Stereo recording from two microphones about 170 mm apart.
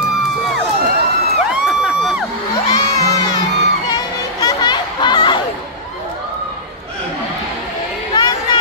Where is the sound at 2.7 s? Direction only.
20° left (ahead or behind).